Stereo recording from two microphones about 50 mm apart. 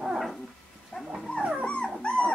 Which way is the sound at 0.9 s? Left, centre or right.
Left.